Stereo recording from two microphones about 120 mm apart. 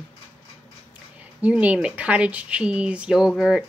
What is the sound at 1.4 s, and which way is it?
Speech, 10° right (ahead or behind).